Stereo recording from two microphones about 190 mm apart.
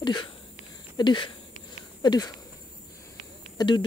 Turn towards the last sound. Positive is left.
turn(degrees=25)  # may be behind; listen again after turning